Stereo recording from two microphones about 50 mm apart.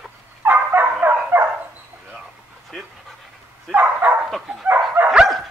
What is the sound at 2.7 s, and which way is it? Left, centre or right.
Dog, centre.